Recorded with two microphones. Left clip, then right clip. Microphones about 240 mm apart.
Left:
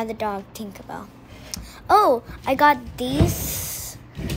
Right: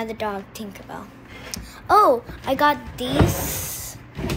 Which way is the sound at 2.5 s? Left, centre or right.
Centre.